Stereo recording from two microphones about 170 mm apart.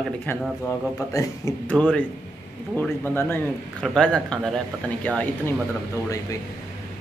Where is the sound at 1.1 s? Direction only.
20° left (ahead or behind).